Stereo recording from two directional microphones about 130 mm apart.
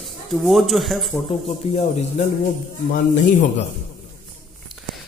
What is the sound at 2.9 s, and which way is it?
Speech, 80° left.